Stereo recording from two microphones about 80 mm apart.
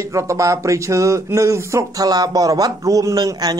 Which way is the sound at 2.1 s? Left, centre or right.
Right.